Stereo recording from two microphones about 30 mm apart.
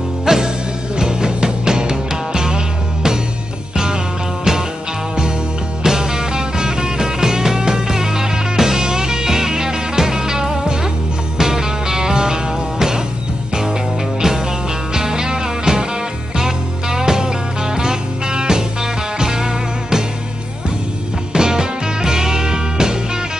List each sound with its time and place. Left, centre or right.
0.2 s music: centre
5.9 s music: centre
15.0 s music: right
21.3 s music: right